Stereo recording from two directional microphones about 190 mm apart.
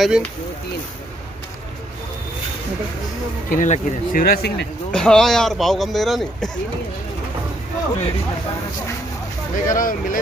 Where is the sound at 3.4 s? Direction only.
40° left (ahead or behind).